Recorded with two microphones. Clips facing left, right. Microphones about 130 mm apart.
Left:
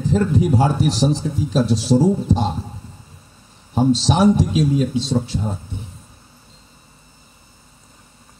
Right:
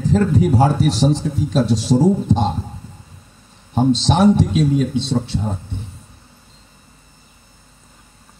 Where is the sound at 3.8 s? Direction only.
10° left (ahead or behind).